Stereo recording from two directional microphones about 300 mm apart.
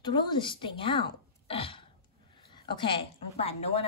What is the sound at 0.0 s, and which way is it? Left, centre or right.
A woman's voice, centre.